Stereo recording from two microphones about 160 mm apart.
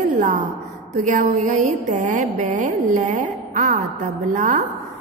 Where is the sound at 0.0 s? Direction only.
50° right (ahead or behind).